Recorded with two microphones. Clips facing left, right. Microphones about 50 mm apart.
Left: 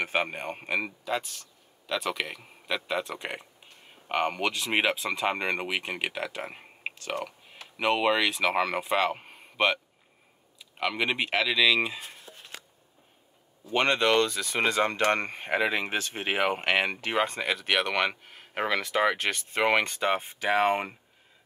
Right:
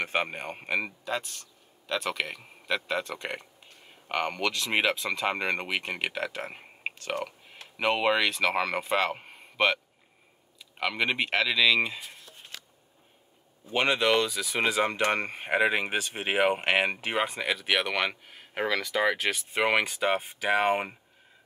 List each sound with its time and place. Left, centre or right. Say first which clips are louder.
0.0 s speech: left 1 dB; centre
13.7 s speech: left 1 dB; centre
18.9 s speech: left 2 dB; centre
19.1 s speech: even; centre